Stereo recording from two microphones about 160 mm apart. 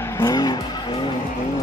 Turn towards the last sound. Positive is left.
turn(degrees=20)  # may be behind; listen again after turning